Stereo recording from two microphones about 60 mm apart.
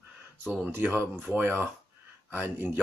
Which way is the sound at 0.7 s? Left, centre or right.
Right.